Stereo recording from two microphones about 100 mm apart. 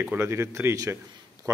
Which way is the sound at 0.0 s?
20° right (ahead or behind).